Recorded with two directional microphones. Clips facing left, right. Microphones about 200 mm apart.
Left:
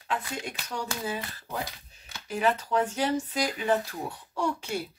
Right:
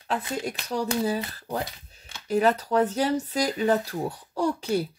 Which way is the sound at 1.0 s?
35° right (ahead or behind).